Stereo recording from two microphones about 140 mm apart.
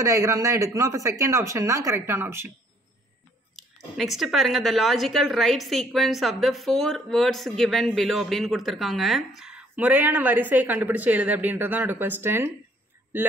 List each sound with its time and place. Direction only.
0.0 s speech: 25° right (ahead or behind)
3.5 s speech: centre (ahead or behind)